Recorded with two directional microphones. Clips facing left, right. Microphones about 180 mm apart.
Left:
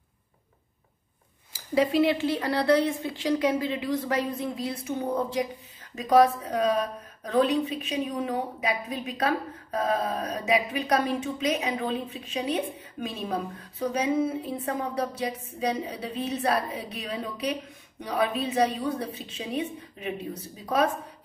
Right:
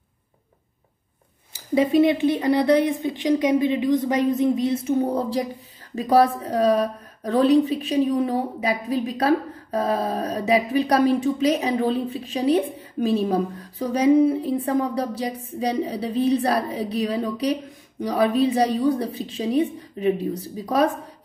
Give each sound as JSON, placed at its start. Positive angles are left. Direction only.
{"t": 1.5, "sound": "a woman's voice", "side_deg": -20}
{"t": 5.0, "sound": "a woman's voice", "side_deg": -35}